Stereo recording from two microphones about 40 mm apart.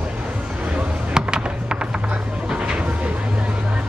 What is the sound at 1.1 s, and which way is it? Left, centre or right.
Fireworks, right.